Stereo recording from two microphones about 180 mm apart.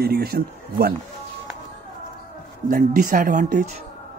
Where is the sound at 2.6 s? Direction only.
45° right (ahead or behind).